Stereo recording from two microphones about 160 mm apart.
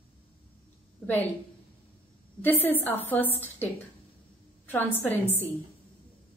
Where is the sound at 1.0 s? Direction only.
10° left (ahead or behind).